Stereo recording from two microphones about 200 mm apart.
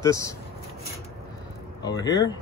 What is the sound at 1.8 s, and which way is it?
Speech, 20° left (ahead or behind).